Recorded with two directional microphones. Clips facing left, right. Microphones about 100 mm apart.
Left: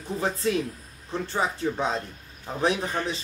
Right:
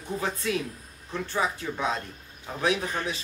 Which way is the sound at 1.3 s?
30° left (ahead or behind).